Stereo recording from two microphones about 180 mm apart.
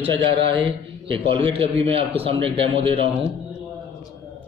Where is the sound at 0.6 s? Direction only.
30° right (ahead or behind).